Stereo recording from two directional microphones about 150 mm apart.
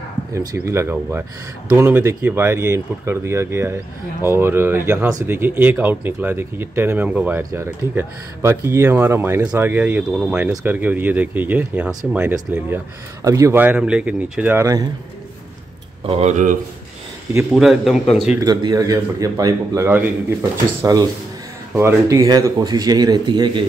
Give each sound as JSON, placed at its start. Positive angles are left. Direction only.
{"t": 0.3, "sound": "speech", "side_deg": -25}
{"t": 16.1, "sound": "speech", "side_deg": -50}
{"t": 17.5, "sound": "a man's voice", "side_deg": 0}
{"t": 18.4, "sound": "a man's voice", "side_deg": -25}